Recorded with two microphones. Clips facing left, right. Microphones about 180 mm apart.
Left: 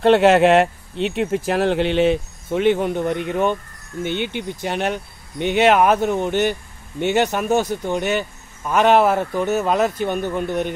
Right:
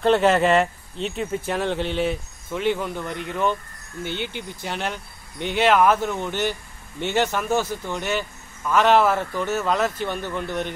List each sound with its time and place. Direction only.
0.0 s speech: 70° left (ahead or behind)
2.5 s speech: 20° left (ahead or behind)